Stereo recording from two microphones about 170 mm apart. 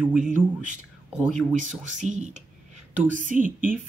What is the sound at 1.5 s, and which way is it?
Speech, 45° right (ahead or behind).